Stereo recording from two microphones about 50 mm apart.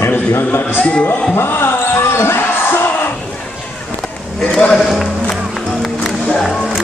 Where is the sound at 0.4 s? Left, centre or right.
Left.